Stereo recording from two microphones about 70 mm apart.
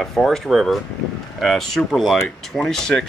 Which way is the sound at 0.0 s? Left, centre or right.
Centre.